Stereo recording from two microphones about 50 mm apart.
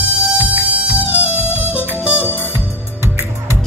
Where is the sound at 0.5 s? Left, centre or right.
Right.